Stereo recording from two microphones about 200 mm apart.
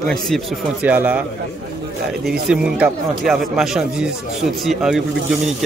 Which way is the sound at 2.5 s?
5° right (ahead or behind).